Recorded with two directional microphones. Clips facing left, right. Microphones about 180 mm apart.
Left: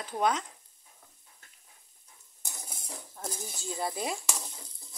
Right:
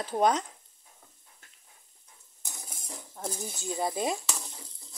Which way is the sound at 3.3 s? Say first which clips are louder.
Right 4 dB; 15° right (ahead or behind).